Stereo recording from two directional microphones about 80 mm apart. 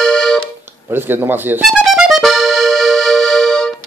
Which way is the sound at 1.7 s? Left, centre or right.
Centre.